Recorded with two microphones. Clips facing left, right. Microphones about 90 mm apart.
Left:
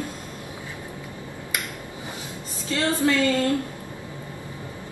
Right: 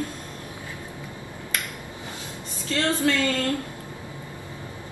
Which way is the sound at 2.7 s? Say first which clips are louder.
Left 1 dB; 20° left (ahead or behind).